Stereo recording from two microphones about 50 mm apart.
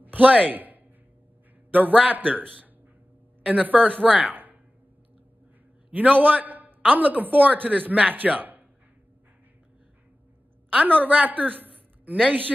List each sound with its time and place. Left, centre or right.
0.0 s a man's voice: right
5.9 s a man's voice: right
10.7 s a woman's voice: right